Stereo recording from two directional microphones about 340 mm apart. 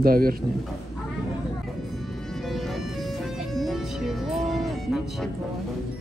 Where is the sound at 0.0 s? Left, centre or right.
Right.